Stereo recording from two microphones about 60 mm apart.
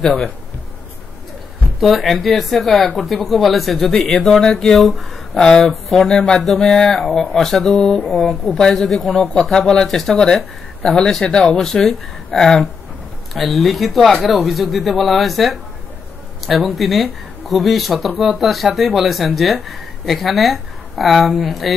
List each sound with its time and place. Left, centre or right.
0.0 s speech: centre
1.8 s speech: centre